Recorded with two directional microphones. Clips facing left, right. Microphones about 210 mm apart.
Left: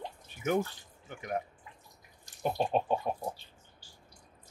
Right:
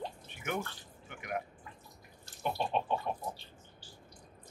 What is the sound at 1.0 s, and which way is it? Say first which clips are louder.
Speech: left 3 dB; 35° left (ahead or behind).